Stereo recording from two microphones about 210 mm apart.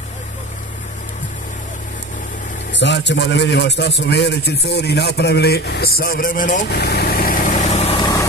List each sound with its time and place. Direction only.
2.7 s a man's voice: 55° left (ahead or behind); by 8.0 s 30° left (ahead or behind)
8.0 s vehicle: 15° left (ahead or behind)